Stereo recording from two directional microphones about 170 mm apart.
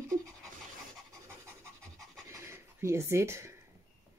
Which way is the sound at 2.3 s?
15° right (ahead or behind).